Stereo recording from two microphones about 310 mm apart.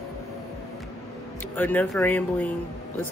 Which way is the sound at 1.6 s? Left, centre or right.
Centre.